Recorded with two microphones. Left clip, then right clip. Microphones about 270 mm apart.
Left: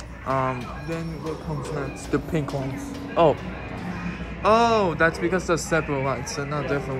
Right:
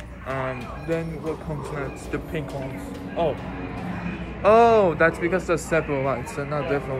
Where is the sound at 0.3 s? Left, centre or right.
Centre.